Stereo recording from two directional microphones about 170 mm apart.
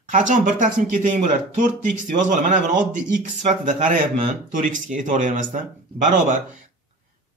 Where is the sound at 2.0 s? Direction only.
50° right (ahead or behind).